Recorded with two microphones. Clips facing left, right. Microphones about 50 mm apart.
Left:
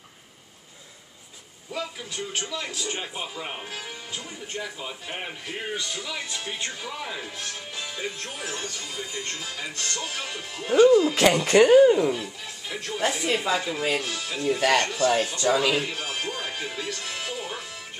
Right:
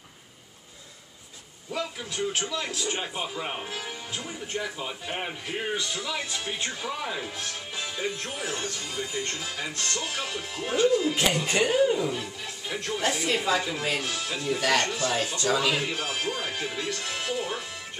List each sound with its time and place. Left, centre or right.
1.7 s speech: centre
11.4 s speech: left
12.1 s speech: centre
14.6 s speech: centre